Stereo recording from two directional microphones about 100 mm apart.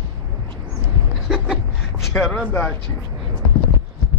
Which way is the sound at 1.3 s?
5° right (ahead or behind).